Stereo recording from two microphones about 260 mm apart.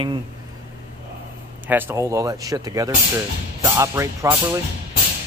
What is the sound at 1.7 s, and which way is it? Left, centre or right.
Speech, centre.